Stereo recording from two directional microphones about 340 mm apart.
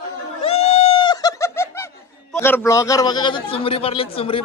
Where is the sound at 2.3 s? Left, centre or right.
Centre.